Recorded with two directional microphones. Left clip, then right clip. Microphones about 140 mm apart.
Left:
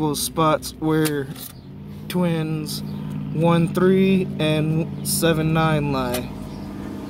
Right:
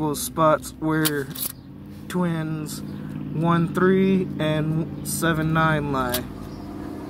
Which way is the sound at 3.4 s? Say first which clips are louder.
Left 3 dB; 5° right (ahead or behind).